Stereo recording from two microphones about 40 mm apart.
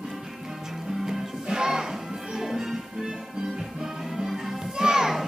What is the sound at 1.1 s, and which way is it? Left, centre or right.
Music, centre.